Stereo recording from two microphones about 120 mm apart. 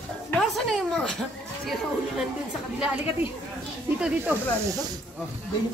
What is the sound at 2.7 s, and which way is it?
Speech, 10° right (ahead or behind).